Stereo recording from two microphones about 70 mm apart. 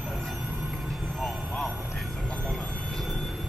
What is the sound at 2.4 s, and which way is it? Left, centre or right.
Train, centre.